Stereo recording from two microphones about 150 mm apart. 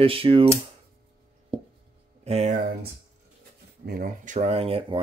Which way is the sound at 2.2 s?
45° right (ahead or behind).